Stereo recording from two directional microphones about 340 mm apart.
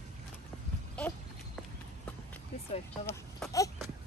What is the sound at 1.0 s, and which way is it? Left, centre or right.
Clip-clop, centre.